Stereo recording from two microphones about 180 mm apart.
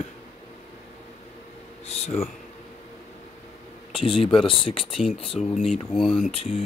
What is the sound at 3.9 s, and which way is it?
Speech, 30° left (ahead or behind).